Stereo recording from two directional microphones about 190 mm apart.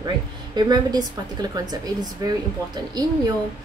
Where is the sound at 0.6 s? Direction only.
20° right (ahead or behind).